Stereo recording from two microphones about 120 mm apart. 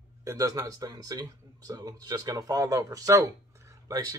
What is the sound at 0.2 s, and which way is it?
Speech, 30° right (ahead or behind).